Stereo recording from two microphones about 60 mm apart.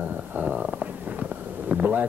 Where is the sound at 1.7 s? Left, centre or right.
Right.